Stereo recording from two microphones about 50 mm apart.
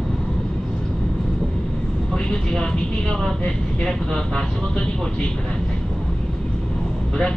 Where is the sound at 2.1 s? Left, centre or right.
Centre.